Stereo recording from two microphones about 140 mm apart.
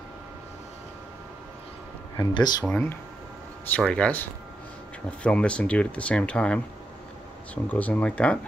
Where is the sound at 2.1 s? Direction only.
30° left (ahead or behind).